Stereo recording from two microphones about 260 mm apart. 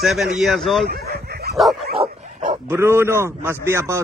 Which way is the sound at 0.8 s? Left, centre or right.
Right.